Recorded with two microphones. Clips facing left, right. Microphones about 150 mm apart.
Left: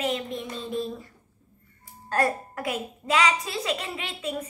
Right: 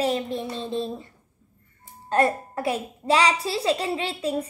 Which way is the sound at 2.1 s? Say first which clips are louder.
Right 4 dB; 25° right (ahead or behind).